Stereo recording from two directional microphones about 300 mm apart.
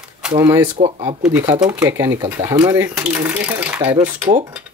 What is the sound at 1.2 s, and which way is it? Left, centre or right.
Speech, centre.